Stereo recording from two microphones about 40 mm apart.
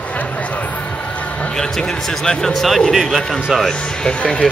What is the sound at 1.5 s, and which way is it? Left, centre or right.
A man's voice, centre.